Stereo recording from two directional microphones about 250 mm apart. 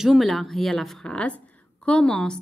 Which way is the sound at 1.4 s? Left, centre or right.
Centre.